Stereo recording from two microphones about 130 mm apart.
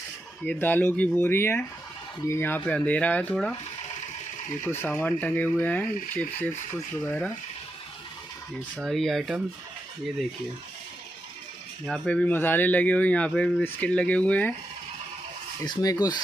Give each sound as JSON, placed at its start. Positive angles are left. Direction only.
{"t": 0.5, "sound": "speech", "side_deg": 15}
{"t": 4.9, "sound": "speech", "side_deg": 15}
{"t": 8.7, "sound": "speech", "side_deg": 0}
{"t": 11.8, "sound": "speech", "side_deg": 5}
{"t": 15.6, "sound": "speech", "side_deg": 30}